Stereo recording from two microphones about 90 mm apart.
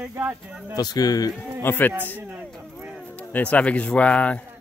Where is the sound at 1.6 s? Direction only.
20° left (ahead or behind).